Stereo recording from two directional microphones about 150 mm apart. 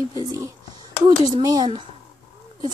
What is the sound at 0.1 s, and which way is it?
Speech, 25° right (ahead or behind).